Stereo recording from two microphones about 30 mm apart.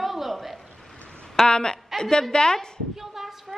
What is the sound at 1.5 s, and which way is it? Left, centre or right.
A woman's voice, left.